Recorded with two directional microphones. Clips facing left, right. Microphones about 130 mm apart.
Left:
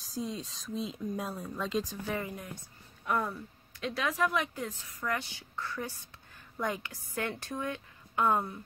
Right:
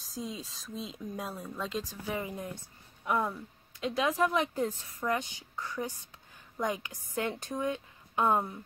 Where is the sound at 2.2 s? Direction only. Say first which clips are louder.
Right 2 dB; 20° right (ahead or behind).